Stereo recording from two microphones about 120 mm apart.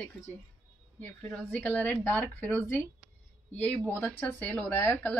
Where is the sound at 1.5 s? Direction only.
10° left (ahead or behind).